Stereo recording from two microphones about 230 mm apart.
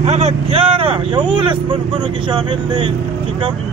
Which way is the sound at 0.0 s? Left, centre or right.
Right.